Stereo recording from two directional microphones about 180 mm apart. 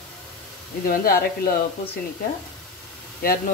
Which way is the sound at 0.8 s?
55° left (ahead or behind).